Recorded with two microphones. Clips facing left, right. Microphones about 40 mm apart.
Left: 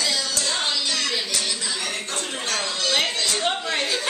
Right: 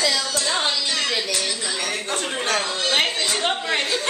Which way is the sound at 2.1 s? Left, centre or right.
Right.